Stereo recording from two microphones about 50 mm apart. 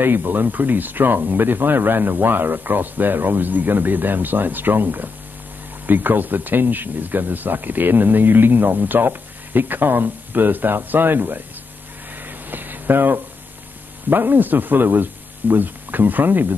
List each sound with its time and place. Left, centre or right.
0.0 s speech: right
12.2 s a sound: right
14.0 s speech: right